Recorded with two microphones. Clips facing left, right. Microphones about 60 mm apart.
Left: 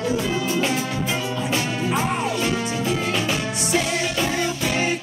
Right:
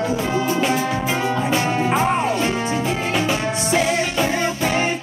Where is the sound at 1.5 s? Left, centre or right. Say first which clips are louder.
Right 2 dB; right.